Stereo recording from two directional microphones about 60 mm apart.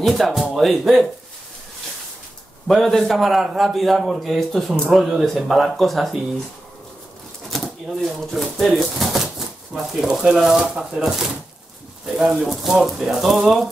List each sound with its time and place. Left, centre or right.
0.0 s a man's voice: centre
2.7 s a man's voice: centre
7.4 s speech: centre
12.2 s a man's voice: centre